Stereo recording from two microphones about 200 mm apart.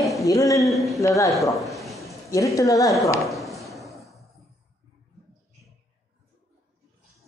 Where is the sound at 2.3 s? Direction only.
15° left (ahead or behind).